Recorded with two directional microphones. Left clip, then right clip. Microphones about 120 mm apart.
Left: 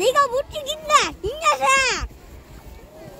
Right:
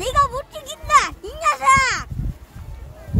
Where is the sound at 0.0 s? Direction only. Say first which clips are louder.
Left 1 dB; 25° right (ahead or behind).